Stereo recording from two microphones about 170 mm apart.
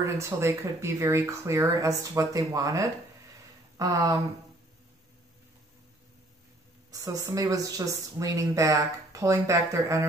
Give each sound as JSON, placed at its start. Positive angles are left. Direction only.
{"t": 0.0, "sound": "speech", "side_deg": -15}
{"t": 6.9, "sound": "speech", "side_deg": -20}